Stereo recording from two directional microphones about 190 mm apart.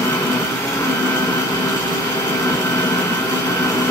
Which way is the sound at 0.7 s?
15° left (ahead or behind).